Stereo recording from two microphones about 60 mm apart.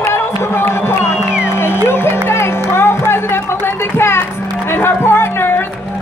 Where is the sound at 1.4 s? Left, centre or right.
Left.